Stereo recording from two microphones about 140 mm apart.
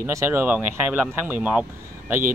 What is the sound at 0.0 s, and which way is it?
Speech, 20° right (ahead or behind).